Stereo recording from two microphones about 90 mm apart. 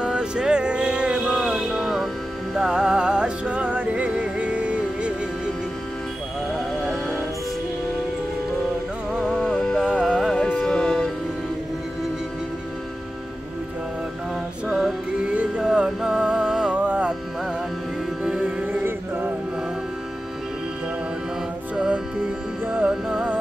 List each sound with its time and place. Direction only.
0.0 s music: 10° right (ahead or behind)
9.4 s music: 5° left (ahead or behind)
15.6 s music: 10° right (ahead or behind)
18.2 s music: 10° right (ahead or behind)
18.7 s chant: 20° right (ahead or behind)
21.7 s music: 10° right (ahead or behind)